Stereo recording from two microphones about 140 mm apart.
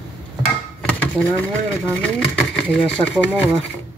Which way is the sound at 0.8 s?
10° left (ahead or behind).